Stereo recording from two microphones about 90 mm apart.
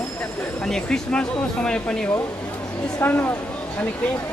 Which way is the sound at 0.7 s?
5° left (ahead or behind).